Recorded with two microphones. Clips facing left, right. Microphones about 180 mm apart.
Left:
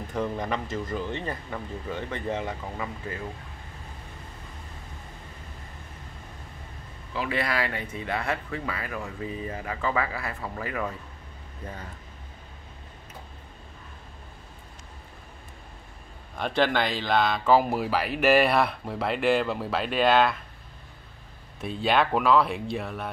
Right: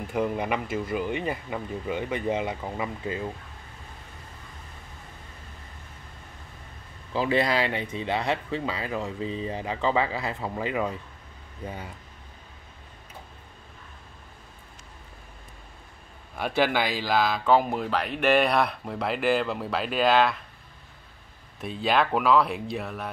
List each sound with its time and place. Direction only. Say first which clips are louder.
0.0 s speech: right 3 dB; 10° right (ahead or behind)
7.2 s speech: right 4 dB; 30° right (ahead or behind); by 11.9 s 10° right (ahead or behind)
16.3 s speech: even; 5° right (ahead or behind)
21.5 s speech: even; centre (ahead or behind)